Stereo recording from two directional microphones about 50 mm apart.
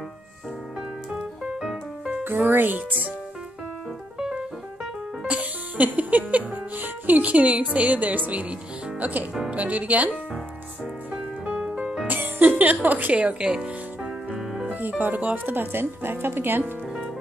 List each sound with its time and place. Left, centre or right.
1.4 s music: centre
2.2 s speech: right
4.2 s music: centre
7.6 s speech: right
11.1 s music: right
12.1 s a woman's voice: right
13.1 s music: right
14.4 s music: centre
14.7 s speech: right